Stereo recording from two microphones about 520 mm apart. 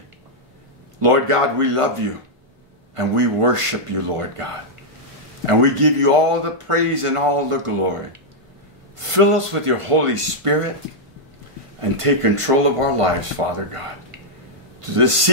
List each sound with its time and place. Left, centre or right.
0.9 s speech: right
11.8 s a man's voice: right